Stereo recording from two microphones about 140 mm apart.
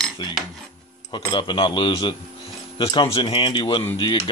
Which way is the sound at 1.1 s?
35° left (ahead or behind).